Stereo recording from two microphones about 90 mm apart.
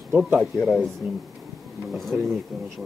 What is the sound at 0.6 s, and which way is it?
Speech, 5° left (ahead or behind).